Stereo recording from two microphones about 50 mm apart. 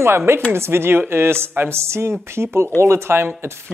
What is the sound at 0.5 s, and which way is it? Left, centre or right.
Speech, right.